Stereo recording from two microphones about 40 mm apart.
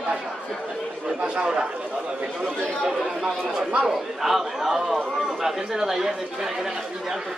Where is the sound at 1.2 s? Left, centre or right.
Right.